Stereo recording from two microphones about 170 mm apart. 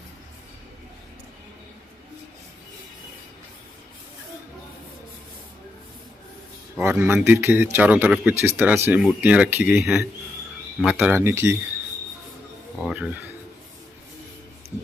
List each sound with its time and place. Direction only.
6.8 s speech: 10° right (ahead or behind)
12.8 s speech: 10° right (ahead or behind)